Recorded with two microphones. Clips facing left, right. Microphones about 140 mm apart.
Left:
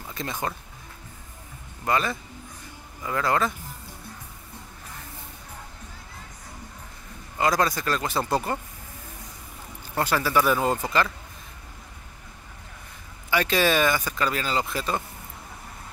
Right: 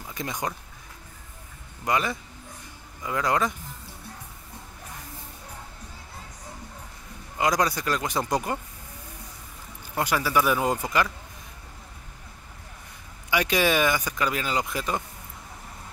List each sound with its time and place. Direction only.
0.1 s speech: 15° right (ahead or behind)
1.9 s speech: 15° right (ahead or behind)
7.3 s speech: 15° right (ahead or behind)
9.9 s speech: 10° right (ahead or behind)
13.3 s speech: 15° right (ahead or behind)